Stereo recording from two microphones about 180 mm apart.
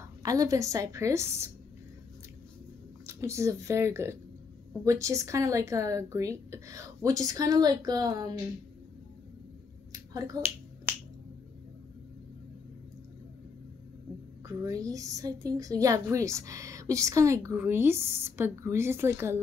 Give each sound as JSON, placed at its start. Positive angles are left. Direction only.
{"t": 0.2, "sound": "a woman's voice", "side_deg": -20}
{"t": 3.1, "sound": "a woman's voice", "side_deg": -15}
{"t": 9.9, "sound": "finger snapping", "side_deg": -20}
{"t": 14.4, "sound": "a woman's voice", "side_deg": -20}